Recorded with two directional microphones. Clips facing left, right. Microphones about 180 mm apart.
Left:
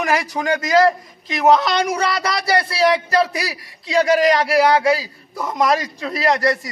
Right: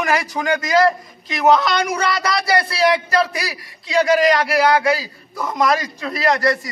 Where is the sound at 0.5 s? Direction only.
35° left (ahead or behind).